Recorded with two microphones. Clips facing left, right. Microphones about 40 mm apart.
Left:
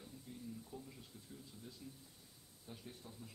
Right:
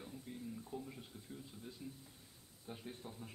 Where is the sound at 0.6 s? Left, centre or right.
Right.